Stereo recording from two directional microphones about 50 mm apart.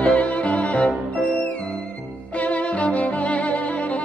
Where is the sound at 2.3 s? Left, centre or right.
Left.